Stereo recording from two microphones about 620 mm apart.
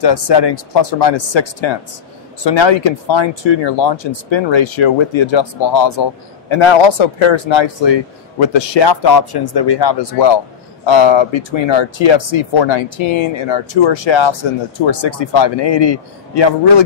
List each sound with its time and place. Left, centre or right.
0.0 s speech: left